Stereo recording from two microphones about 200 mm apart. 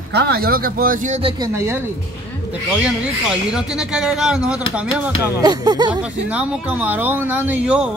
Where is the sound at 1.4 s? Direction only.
15° right (ahead or behind).